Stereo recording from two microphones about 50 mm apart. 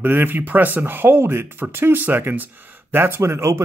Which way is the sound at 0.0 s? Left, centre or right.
Right.